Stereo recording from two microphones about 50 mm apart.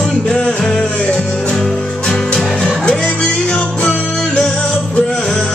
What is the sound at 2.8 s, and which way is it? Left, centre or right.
Music, centre.